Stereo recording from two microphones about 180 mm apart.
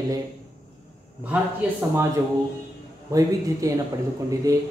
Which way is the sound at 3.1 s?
20° right (ahead or behind).